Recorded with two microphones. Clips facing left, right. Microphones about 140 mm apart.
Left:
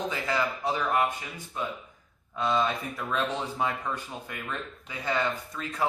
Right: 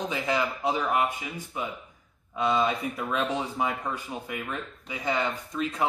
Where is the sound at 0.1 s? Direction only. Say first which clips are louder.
Right 1 dB; 20° right (ahead or behind).